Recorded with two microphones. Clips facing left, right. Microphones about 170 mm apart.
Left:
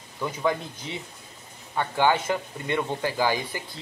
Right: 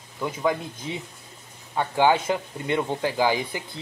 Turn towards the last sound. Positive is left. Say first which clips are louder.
# right 2 dB
turn(degrees=-15)  # may be behind; listen again after turning